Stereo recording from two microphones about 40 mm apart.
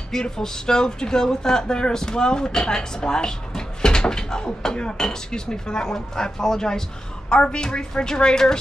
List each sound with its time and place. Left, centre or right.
0.1 s a woman's voice: centre